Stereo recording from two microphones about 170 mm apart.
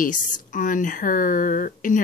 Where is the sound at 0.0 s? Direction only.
50° left (ahead or behind).